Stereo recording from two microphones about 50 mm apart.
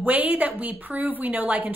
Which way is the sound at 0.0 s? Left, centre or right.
Right.